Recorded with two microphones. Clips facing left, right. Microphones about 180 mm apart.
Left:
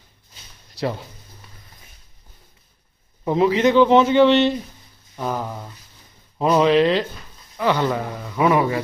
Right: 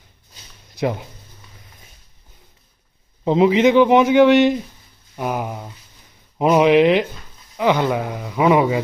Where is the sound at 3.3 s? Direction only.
20° right (ahead or behind).